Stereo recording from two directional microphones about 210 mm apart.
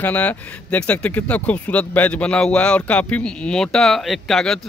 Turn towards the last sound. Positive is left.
turn(degrees=0)  # may be behind; listen again after turning